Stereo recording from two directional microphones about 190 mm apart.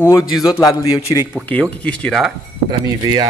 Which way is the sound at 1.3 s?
5° left (ahead or behind).